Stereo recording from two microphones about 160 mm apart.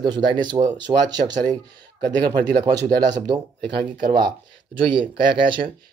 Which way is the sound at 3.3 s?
30° right (ahead or behind).